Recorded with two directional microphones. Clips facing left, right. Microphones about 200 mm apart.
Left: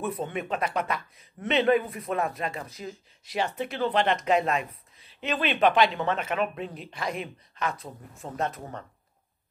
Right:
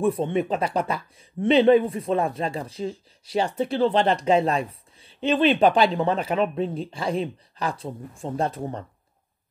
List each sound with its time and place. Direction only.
0.0 s speech: 30° right (ahead or behind)